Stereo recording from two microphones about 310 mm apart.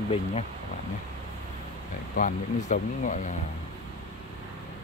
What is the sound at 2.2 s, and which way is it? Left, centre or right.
Speech, left.